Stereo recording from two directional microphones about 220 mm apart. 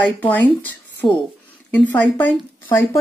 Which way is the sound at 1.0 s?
20° left (ahead or behind).